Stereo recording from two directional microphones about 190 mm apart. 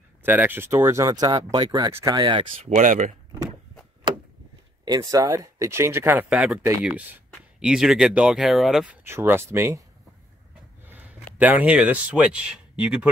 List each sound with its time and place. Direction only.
0.2 s speech: 10° right (ahead or behind); by 2.7 s 25° right (ahead or behind)
2.7 s speech: 40° right (ahead or behind)
4.8 s speech: 20° right (ahead or behind); by 8.8 s centre (ahead or behind)
9.0 s speech: 10° right (ahead or behind)
10.9 s speech: 10° right (ahead or behind)